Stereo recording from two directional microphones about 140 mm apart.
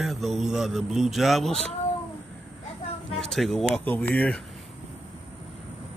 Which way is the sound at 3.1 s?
5° left (ahead or behind).